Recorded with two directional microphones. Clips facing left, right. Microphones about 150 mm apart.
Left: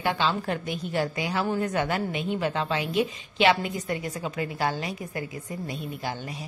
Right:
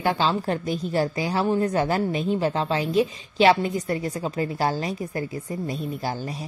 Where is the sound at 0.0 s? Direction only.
35° right (ahead or behind).